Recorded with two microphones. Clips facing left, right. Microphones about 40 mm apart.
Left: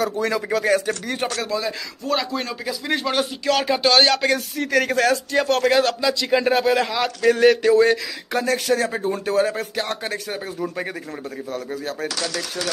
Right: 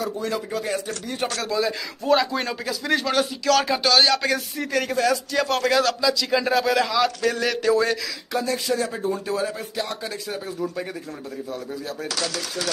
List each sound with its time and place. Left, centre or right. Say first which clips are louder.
0.0 s speech: left 4 dB; left
1.2 s speech: left 1 dB; centre
1.5 s speech: right 1 dB; centre
2.6 s a man's voice: even; centre
3.9 s a man's voice: left 1 dB; left
4.6 s speech: left 4 dB; left
5.3 s a man's voice: left 3 dB; left
8.3 s speech: left 4 dB; left